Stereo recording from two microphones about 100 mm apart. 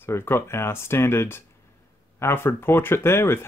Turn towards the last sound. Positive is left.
turn(degrees=25)  # may be behind; listen again after turning